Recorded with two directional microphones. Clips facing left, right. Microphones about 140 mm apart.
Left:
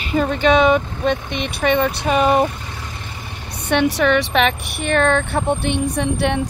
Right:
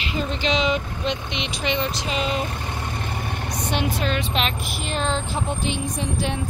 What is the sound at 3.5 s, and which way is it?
Speech, 65° left (ahead or behind).